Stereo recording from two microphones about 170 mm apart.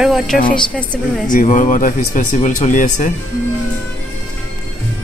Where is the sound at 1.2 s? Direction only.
50° left (ahead or behind).